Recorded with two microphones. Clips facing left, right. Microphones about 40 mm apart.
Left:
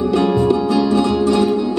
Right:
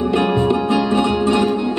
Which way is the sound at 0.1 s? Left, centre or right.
Right.